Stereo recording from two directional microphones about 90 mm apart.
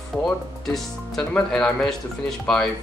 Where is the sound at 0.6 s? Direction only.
5° left (ahead or behind).